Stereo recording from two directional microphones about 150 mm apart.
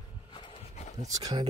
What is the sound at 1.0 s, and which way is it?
Speech, 25° right (ahead or behind).